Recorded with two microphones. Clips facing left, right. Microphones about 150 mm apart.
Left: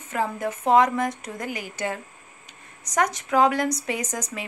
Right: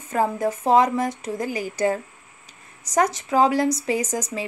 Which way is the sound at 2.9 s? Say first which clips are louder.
Right 2 dB; 30° right (ahead or behind).